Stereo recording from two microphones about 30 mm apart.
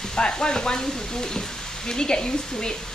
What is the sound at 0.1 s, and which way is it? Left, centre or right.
Speech, left.